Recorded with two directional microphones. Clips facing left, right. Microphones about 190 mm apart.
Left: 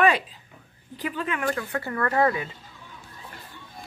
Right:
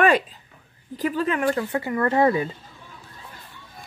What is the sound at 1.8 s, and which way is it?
Speech, 20° right (ahead or behind).